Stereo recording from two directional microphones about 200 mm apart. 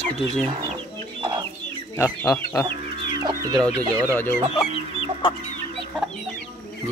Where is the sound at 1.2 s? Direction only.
25° right (ahead or behind).